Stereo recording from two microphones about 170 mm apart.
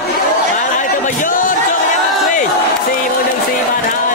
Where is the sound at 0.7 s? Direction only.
50° left (ahead or behind).